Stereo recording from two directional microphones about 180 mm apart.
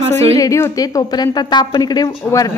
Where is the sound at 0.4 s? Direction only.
15° left (ahead or behind).